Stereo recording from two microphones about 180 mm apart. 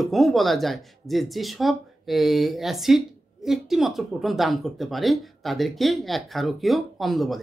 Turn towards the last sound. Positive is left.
turn(degrees=0)  # may be behind; listen again after turning